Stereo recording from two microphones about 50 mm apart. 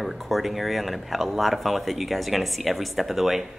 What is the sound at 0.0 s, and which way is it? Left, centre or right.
Speech, centre.